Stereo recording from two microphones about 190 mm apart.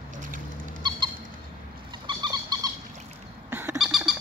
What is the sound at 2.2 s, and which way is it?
Bird, 20° right (ahead or behind).